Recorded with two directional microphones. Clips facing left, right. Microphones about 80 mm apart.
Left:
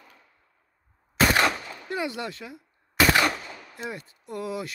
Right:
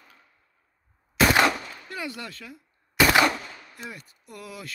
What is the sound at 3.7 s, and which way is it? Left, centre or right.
Speech, left.